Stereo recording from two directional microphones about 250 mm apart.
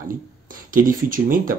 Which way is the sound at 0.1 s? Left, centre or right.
Right.